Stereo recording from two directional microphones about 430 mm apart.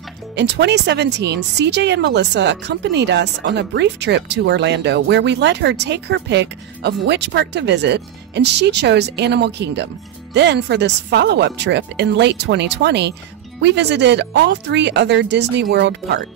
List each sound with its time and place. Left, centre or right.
0.4 s speech: right